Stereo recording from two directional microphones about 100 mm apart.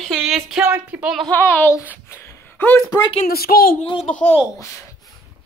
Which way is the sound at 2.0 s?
20° left (ahead or behind).